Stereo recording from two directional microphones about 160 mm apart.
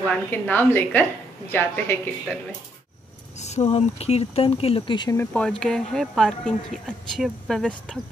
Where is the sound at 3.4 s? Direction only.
45° left (ahead or behind); by 5.2 s 30° left (ahead or behind).